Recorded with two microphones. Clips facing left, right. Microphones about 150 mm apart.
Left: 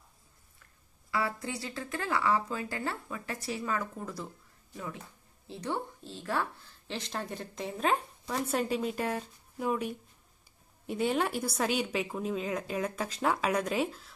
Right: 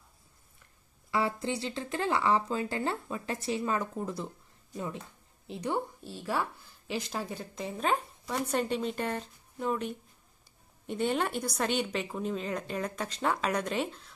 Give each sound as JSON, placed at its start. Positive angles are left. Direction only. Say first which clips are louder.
{"t": 1.1, "sound": "a woman's voice", "louder": "right 3 dB", "side_deg": -25}